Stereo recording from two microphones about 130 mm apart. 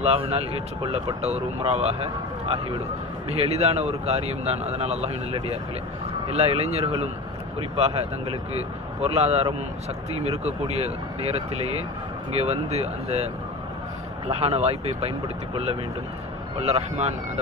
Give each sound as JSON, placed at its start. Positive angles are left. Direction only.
{"t": 0.0, "sound": "speech", "side_deg": -50}
{"t": 12.3, "sound": "speech", "side_deg": -55}